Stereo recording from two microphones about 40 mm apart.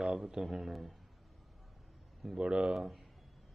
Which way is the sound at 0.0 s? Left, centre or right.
Centre.